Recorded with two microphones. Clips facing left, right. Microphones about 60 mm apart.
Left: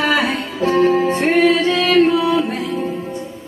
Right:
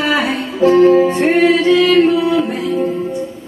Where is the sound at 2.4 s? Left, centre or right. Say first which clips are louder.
Right 4 dB; centre.